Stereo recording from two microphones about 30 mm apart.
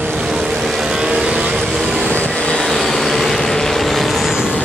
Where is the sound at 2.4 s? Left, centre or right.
Left.